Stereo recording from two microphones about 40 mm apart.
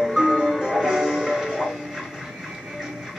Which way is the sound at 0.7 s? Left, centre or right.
Centre.